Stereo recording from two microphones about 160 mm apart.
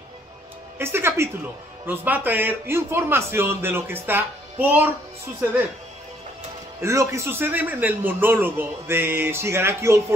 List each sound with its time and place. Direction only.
0.7 s a man's voice: 15° right (ahead or behind)
6.8 s a man's voice: 20° right (ahead or behind)